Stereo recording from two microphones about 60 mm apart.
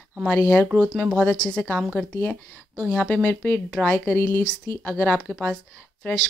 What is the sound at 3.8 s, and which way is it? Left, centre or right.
Speech, centre.